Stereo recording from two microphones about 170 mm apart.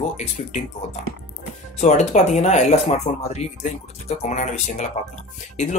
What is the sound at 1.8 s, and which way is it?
Speech, 45° left (ahead or behind).